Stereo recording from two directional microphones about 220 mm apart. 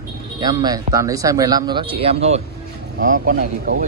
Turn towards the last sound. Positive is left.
turn(degrees=-40)  # may be behind; listen again after turning